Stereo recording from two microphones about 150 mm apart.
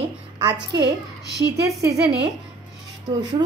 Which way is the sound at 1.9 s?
90° right.